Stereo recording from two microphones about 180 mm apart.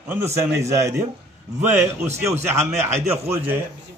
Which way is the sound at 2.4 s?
15° right (ahead or behind).